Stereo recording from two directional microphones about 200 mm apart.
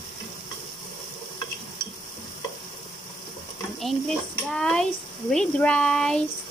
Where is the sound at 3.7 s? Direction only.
Centre (ahead or behind).